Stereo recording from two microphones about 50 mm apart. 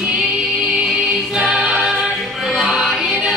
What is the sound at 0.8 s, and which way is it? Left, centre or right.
Music, centre.